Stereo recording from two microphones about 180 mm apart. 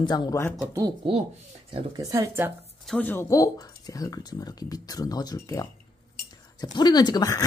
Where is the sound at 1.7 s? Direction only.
20° right (ahead or behind).